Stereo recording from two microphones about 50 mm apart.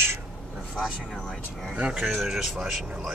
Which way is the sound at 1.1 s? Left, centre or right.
Centre.